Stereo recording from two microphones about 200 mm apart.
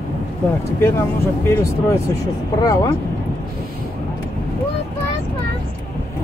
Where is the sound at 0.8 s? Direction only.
10° left (ahead or behind).